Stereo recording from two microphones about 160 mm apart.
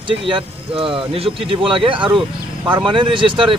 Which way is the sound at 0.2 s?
35° right (ahead or behind).